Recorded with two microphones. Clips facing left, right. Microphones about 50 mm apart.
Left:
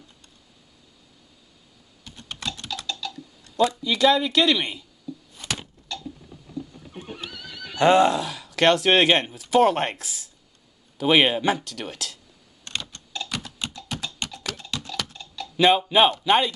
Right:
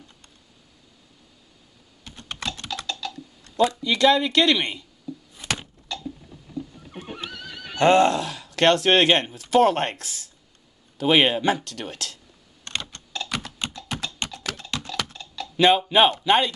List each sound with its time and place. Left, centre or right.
2.0 s typing: right
3.1 s typing: centre
3.8 s speech: centre
7.0 s neigh: right
7.8 s speech: centre
12.9 s typing: right
15.5 s speech: centre